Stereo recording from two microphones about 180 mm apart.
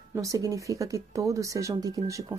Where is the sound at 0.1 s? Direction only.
20° right (ahead or behind).